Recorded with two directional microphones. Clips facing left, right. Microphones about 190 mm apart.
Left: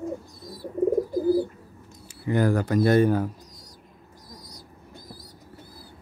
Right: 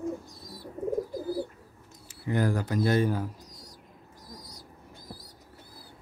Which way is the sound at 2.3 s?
70° left (ahead or behind).